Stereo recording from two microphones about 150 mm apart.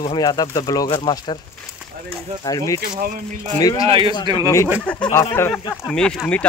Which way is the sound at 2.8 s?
70° right (ahead or behind).